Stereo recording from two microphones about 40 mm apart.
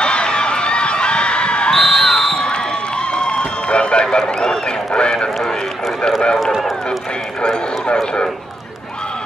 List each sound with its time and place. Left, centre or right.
0.0 s a sound: left
1.7 s crowd: centre
3.2 s run: left
7.4 s clip-clop: left